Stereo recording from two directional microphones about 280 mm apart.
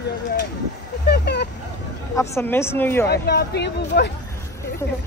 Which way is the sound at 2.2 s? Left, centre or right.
Centre.